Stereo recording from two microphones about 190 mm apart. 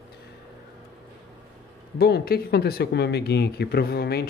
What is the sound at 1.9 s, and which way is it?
Speech, 55° left (ahead or behind).